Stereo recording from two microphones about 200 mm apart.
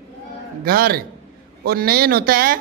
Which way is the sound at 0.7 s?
45° right (ahead or behind).